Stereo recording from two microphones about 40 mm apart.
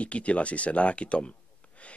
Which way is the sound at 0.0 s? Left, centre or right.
Left.